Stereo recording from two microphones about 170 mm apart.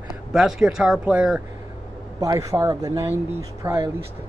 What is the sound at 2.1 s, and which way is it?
Speech, 20° right (ahead or behind).